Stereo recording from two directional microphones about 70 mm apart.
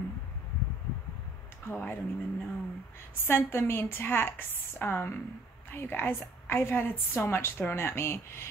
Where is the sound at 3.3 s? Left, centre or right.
Left.